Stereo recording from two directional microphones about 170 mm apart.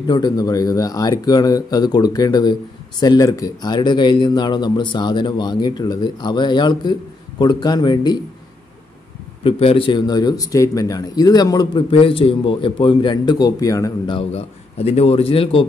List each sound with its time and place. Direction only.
0.0 s speech: 25° left (ahead or behind)
9.4 s speech: 35° left (ahead or behind)